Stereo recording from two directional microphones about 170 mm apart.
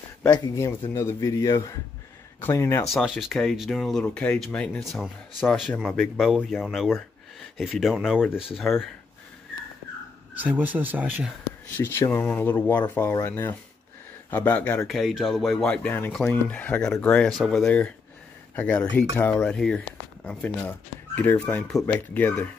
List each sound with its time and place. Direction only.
0.3 s a man's voice: 15° left (ahead or behind)
2.9 s speech: centre (ahead or behind)
10.4 s speech: 10° right (ahead or behind)
11.7 s speech: 15° left (ahead or behind)
14.9 s speech: centre (ahead or behind)